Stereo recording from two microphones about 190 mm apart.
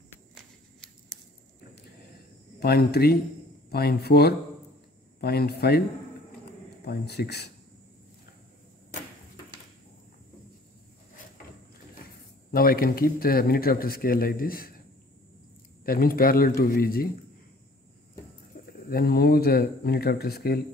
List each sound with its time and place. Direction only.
2.6 s speech: 60° left (ahead or behind)
6.8 s speech: 60° left (ahead or behind)
12.4 s speech: 50° left (ahead or behind)
15.8 s speech: 50° left (ahead or behind)
18.9 s speech: 55° left (ahead or behind)